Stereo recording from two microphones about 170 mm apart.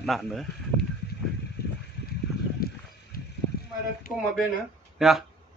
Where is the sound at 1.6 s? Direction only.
70° left (ahead or behind).